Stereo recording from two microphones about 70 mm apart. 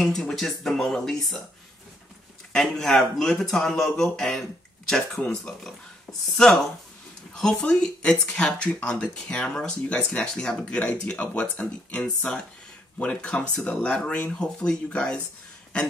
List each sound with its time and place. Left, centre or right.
0.0 s speech: centre
2.5 s speech: centre
5.2 s speech: centre
7.3 s speech: centre